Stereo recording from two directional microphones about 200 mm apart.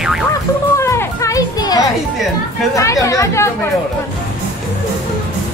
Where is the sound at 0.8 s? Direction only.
15° left (ahead or behind).